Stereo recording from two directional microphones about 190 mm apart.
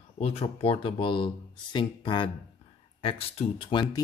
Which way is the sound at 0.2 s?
30° left (ahead or behind).